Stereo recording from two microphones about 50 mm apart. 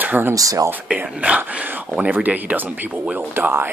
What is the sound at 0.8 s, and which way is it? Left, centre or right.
Speech, right.